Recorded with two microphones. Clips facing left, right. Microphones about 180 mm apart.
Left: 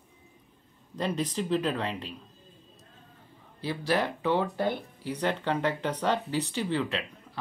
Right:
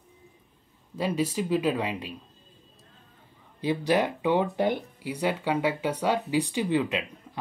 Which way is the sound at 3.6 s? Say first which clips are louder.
Right 4 dB; 15° right (ahead or behind).